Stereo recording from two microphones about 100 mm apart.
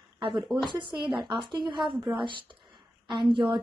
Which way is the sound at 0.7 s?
55° right (ahead or behind).